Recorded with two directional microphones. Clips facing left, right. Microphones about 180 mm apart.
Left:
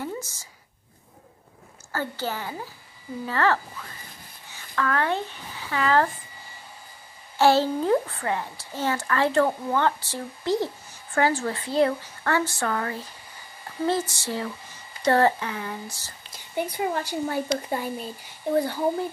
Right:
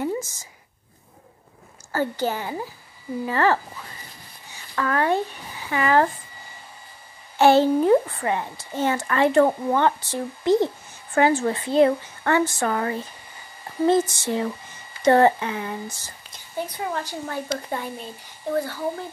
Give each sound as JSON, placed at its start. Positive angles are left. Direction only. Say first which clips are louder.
{"t": 0.0, "sound": "a sound", "louder": "right 6 dB", "side_deg": -20}
{"t": 1.9, "sound": "a woman's voice", "louder": "right 5 dB", "side_deg": -15}
{"t": 4.7, "sound": "speech", "louder": "right 3 dB", "side_deg": -15}
{"t": 7.3, "sound": "a child's voice", "louder": "right 4 dB", "side_deg": -20}
{"t": 16.5, "sound": "a woman's voice", "louder": "left 2 dB", "side_deg": 10}
{"t": 18.5, "sound": "speech", "louder": "left 2 dB", "side_deg": 20}